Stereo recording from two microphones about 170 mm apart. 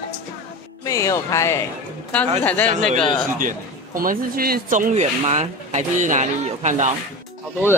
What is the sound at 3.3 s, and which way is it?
Speech, 55° right (ahead or behind).